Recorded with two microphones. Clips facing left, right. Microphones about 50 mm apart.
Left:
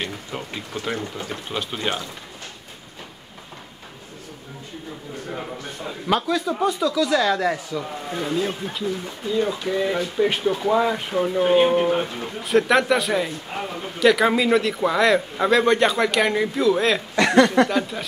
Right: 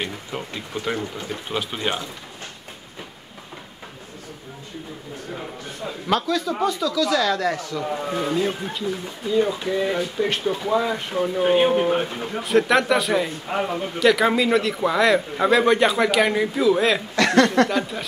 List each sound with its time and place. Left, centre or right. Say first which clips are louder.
0.0 s a man's voice: right 1 dB; centre
5.4 s a sound: even; centre
6.6 s speech: left 2 dB; centre
8.1 s a man's voice: even; centre
13.6 s speech: right 6 dB; centre
13.9 s a man's voice: left 1 dB; centre